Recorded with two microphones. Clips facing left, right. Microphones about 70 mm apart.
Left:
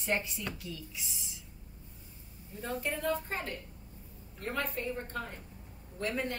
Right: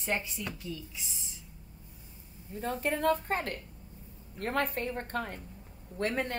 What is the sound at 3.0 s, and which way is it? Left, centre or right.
A woman's voice, right.